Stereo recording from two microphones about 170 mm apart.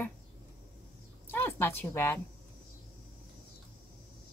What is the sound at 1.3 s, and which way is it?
Speech, 10° left (ahead or behind).